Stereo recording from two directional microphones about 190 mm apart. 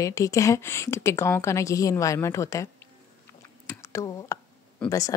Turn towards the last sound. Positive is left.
turn(degrees=5)  # may be behind; listen again after turning